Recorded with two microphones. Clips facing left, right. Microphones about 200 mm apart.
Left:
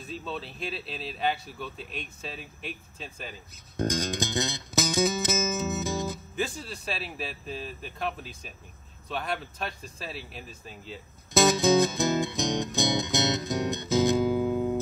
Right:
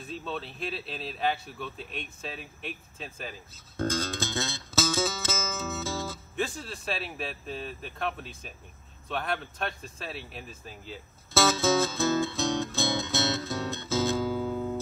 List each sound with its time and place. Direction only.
0.0 s speech: centre (ahead or behind)
3.7 s music: 15° left (ahead or behind)
6.3 s speech: centre (ahead or behind)
11.3 s music: 15° left (ahead or behind)